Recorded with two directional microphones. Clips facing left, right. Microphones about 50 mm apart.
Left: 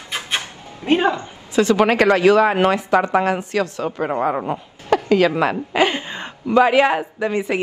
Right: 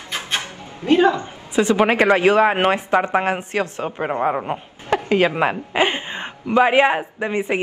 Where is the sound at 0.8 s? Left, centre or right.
Left.